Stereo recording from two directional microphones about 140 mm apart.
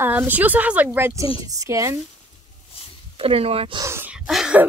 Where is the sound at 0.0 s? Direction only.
15° right (ahead or behind).